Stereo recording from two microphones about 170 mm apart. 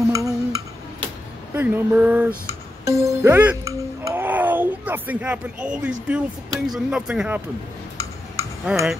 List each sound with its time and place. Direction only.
0.1 s a sound: 20° right (ahead or behind)
2.9 s music: 15° right (ahead or behind)
6.0 s speech: 5° right (ahead or behind)
8.7 s speech: 5° right (ahead or behind)